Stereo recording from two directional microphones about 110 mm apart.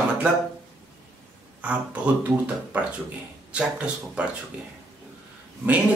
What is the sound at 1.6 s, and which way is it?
Speech, 10° right (ahead or behind).